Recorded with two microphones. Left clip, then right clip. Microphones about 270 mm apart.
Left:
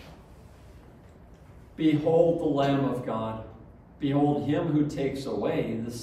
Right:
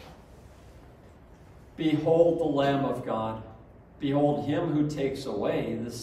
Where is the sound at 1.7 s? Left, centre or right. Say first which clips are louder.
Left 1 dB; centre.